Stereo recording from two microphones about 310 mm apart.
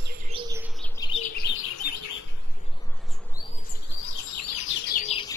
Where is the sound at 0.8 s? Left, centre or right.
Centre; by 1.6 s left.